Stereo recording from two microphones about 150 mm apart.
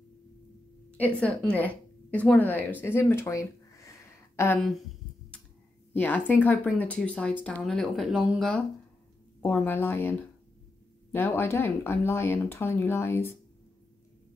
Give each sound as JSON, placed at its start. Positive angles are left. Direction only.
{"t": 0.9, "sound": "speech", "side_deg": 10}
{"t": 4.6, "sound": "speech", "side_deg": 0}
{"t": 5.9, "sound": "speech", "side_deg": 10}